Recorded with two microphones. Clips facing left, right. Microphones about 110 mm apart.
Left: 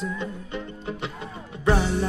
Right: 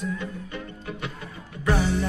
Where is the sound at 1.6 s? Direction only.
25° left (ahead or behind).